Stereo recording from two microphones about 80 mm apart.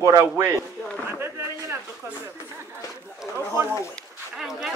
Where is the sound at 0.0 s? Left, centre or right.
Right.